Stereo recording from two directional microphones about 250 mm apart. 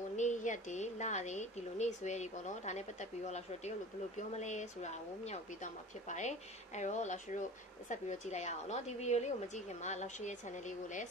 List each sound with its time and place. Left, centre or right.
0.1 s speech: left